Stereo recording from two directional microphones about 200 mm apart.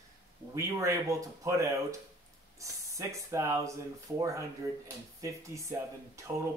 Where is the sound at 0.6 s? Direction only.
15° right (ahead or behind).